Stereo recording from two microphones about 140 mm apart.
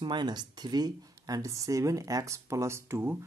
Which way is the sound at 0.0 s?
35° right (ahead or behind).